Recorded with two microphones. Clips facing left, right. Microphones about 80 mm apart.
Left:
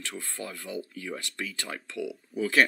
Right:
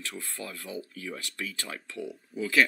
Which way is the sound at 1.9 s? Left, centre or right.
Left.